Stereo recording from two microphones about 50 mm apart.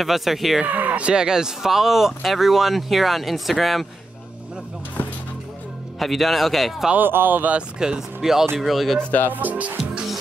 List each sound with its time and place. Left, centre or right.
0.0 s speech: centre
0.7 s speech: right
1.0 s speech: centre
5.9 s speech: centre
7.0 s speech: right
7.8 s speech: centre
9.3 s speech: right